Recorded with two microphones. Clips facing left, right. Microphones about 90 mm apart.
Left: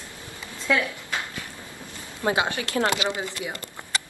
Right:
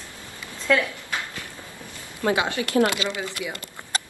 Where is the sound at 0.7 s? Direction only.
5° left (ahead or behind).